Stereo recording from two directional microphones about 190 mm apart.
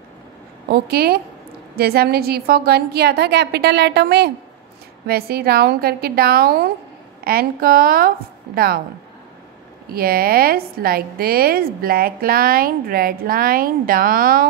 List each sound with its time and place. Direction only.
0.7 s a woman's voice: 55° right (ahead or behind)
9.9 s a woman's voice: 50° right (ahead or behind)